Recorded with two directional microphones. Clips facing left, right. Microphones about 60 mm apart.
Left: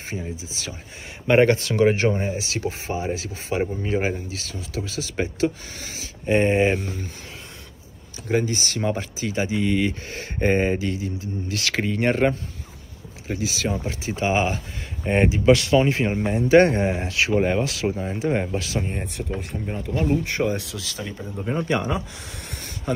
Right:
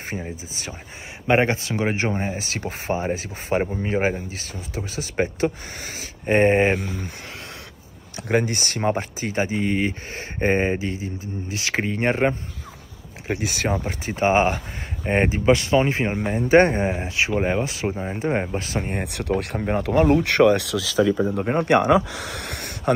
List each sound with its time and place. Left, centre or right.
0.0 s speech: right
1.2 s speech: centre; by 6.7 s right
8.3 s speech: right
13.3 s speech: right
15.0 s speech: right
17.4 s speech: centre
18.6 s speech: right
19.0 s speech: right
21.5 s speech: right
21.9 s speech: right